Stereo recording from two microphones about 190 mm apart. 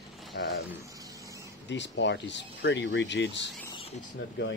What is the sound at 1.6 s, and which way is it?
Speech, 70° left (ahead or behind).